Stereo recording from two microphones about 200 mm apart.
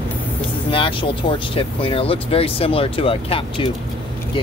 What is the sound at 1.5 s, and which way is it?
Speech, 25° left (ahead or behind).